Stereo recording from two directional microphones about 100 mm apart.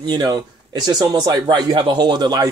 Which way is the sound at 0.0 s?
40° right (ahead or behind).